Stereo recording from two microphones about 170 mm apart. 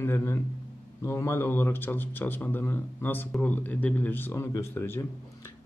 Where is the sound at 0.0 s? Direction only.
15° left (ahead or behind).